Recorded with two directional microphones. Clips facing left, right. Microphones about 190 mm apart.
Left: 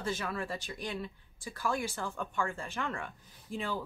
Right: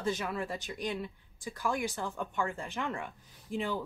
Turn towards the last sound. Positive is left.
turn(degrees=-20)  # may be behind; listen again after turning